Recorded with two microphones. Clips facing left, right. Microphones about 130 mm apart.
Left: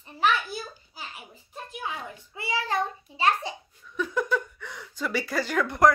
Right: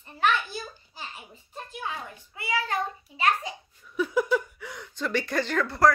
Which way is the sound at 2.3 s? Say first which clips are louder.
Left 1 dB; 25° left (ahead or behind).